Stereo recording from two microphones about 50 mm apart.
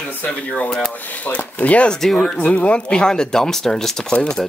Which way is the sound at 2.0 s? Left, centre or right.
Centre.